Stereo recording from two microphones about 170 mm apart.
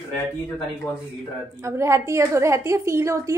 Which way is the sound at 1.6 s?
15° right (ahead or behind).